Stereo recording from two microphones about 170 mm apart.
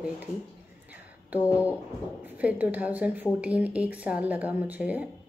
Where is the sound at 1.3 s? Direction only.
10° right (ahead or behind).